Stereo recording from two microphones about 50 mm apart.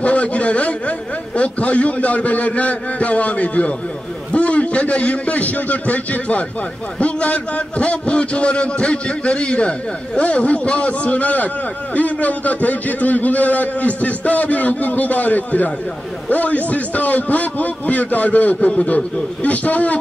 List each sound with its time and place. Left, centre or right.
0.0 s a man's voice: left